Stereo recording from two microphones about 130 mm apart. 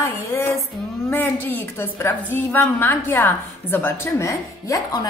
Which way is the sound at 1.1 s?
15° left (ahead or behind).